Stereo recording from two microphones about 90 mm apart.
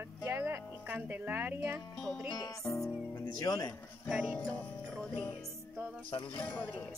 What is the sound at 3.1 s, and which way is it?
Speech, 40° left (ahead or behind).